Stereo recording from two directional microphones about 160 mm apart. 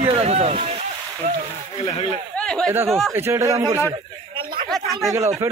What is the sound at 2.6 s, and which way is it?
Speech, 15° right (ahead or behind).